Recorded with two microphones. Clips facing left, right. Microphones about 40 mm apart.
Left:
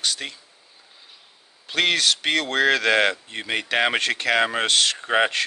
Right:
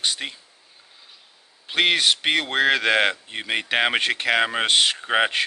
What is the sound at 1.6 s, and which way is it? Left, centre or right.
Speech, centre.